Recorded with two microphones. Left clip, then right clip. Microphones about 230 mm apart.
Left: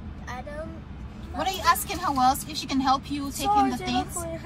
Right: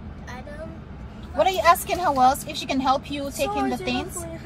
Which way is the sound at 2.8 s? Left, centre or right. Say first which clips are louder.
Right 1 dB; right.